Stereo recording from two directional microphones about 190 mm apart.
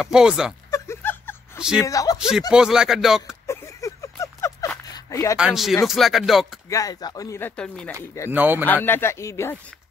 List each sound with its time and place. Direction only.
0.0 s speech: 5° right (ahead or behind)
0.7 s a sound: 15° left (ahead or behind)
1.6 s speech: 5° right (ahead or behind)
1.9 s speech: 20° left (ahead or behind)
2.1 s speech: 5° right (ahead or behind)
3.4 s a sound: 15° left (ahead or behind)
5.4 s speech: centre (ahead or behind)
6.7 s speech: 20° left (ahead or behind)
8.3 s speech: 10° right (ahead or behind)
8.8 s speech: 10° left (ahead or behind)